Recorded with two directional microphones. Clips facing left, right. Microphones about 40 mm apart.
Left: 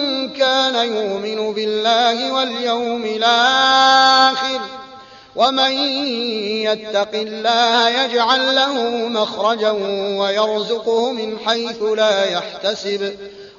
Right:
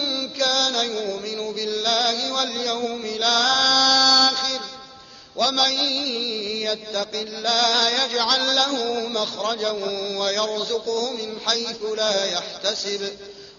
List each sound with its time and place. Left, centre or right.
0.0 s mantra: left
5.4 s music: left